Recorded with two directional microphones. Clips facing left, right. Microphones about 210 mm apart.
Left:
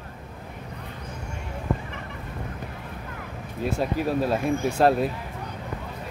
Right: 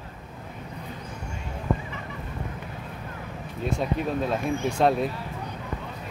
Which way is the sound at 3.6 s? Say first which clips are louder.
Left 2 dB; 5° left (ahead or behind).